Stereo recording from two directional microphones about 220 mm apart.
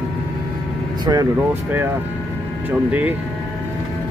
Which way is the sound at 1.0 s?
20° right (ahead or behind).